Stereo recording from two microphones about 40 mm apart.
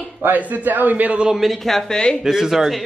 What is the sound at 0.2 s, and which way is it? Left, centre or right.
Speech, right.